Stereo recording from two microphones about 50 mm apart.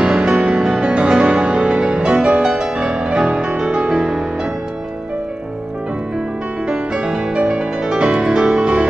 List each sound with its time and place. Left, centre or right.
0.0 s music: centre
6.7 s music: centre